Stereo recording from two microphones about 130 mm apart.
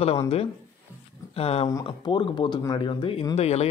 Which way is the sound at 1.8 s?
40° left (ahead or behind).